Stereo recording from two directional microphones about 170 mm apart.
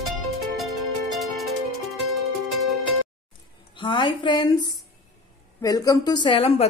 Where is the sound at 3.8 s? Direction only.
25° left (ahead or behind).